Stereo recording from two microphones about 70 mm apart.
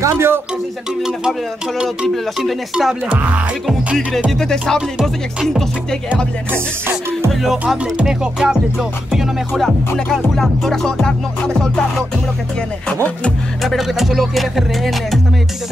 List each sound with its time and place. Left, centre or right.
0.0 s speech: right
2.7 s music: centre
4.4 s music: centre
7.4 s music: centre
10.1 s music: centre
13.6 s music: centre